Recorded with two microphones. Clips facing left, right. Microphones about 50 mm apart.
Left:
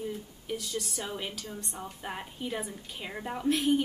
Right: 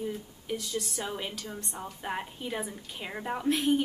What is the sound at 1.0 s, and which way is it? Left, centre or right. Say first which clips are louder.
A woman's voice: right 1 dB; centre.